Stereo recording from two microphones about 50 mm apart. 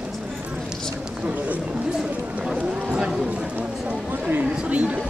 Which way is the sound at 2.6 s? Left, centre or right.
Right.